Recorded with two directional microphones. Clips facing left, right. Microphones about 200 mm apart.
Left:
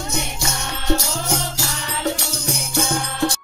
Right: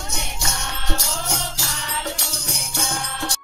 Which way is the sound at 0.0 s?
5° left (ahead or behind).